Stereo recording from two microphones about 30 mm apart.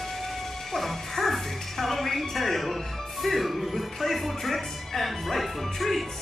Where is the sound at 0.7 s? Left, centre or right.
Centre.